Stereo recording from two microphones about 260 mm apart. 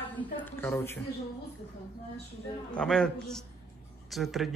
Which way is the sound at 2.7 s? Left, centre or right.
Centre.